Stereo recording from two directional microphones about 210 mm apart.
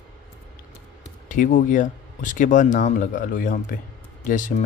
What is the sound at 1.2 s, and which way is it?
Speech, 40° left (ahead or behind).